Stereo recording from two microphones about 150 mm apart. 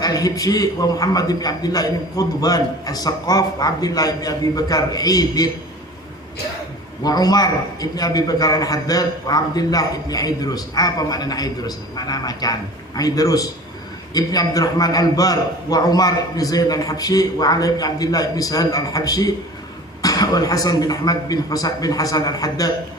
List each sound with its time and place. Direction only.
0.0 s a man's voice: 25° left (ahead or behind)
7.0 s a man's voice: 25° left (ahead or behind)